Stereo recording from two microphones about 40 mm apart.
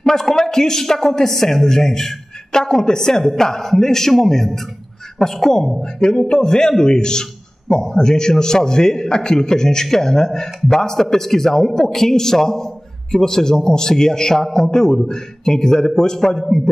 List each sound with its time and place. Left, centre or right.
0.0 s a man's voice: centre